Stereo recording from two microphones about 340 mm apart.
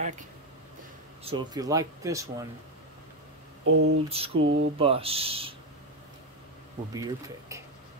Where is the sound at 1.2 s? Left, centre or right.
Centre.